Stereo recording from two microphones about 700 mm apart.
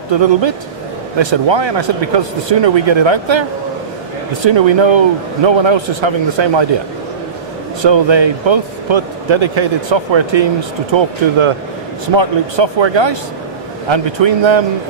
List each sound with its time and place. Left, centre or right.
0.1 s a man's voice: right
4.5 s a man's voice: right
7.8 s a man's voice: right